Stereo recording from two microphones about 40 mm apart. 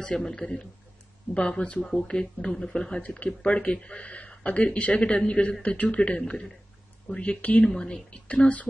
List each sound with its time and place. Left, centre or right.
0.1 s speech: centre
3.0 s speech: left
7.6 s speech: centre
8.3 s speech: left